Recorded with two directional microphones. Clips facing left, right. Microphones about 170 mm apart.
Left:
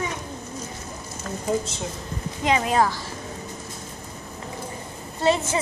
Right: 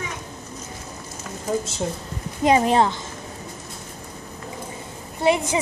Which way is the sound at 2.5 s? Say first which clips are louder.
Right 3 dB; 25° right (ahead or behind).